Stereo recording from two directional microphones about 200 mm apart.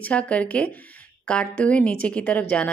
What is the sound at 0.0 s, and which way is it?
Speech, 5° left (ahead or behind).